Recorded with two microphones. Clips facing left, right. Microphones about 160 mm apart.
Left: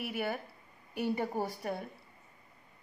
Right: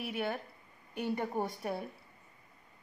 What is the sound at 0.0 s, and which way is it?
A woman's voice, 5° left (ahead or behind).